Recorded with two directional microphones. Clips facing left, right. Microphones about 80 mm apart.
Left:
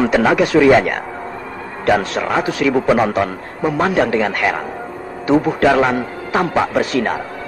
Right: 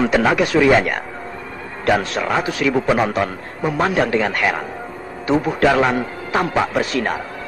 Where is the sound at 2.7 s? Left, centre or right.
Left.